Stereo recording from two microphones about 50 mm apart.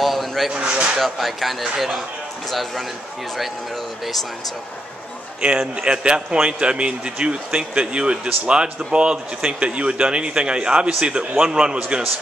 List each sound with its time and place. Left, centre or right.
0.0 s a sound: centre
0.5 s a man's voice: centre
0.9 s speech: centre
5.4 s a man's voice: centre